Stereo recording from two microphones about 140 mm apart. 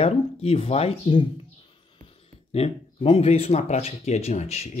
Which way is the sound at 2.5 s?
45° left (ahead or behind).